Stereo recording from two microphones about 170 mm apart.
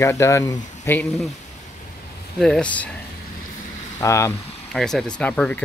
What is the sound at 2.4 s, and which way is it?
Speech, 5° left (ahead or behind).